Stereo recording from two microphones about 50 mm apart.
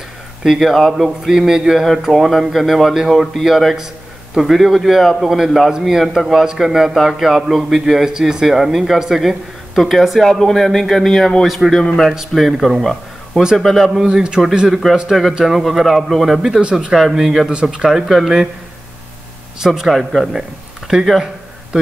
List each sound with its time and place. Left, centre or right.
0.4 s a man's voice: centre
11.7 s a man's voice: centre
12.1 s a man's voice: centre
14.0 s speech: centre
15.4 s a man's voice: centre
19.6 s speech: centre
20.9 s speech: centre